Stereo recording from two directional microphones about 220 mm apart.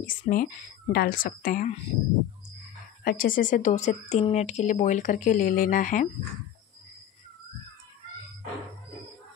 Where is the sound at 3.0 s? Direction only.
40° left (ahead or behind).